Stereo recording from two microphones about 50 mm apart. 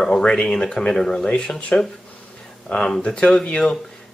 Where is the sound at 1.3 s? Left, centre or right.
Left.